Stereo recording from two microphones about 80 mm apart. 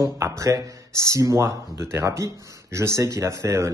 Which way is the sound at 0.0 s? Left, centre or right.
Right.